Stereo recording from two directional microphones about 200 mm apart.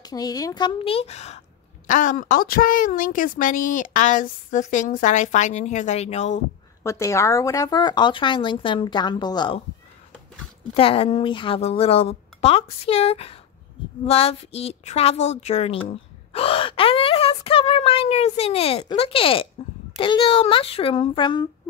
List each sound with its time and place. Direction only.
0.0 s a woman's voice: 20° left (ahead or behind); by 6.4 s 35° left (ahead or behind)
6.8 s speech: 15° left (ahead or behind)
10.7 s a woman's voice: 25° left (ahead or behind)